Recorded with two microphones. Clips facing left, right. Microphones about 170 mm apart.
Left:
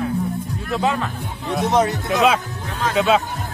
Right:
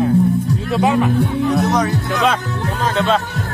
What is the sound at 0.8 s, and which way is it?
Speech, 15° right (ahead or behind).